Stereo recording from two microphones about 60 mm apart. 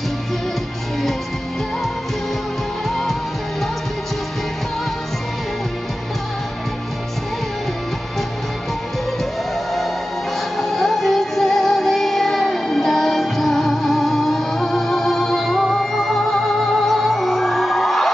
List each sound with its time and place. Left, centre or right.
2.9 s music: centre
9.2 s music: centre